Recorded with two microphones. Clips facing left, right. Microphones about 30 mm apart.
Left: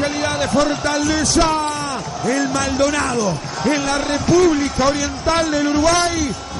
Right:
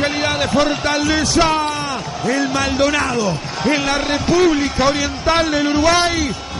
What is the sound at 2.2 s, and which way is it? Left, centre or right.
Speech, right.